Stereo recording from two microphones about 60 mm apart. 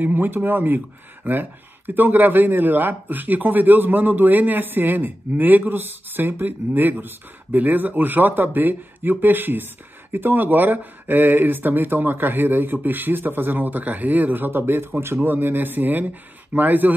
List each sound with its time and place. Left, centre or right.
0.0 s a man's voice: right